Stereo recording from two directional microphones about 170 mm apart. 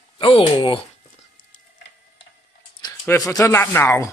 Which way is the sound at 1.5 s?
65° left (ahead or behind).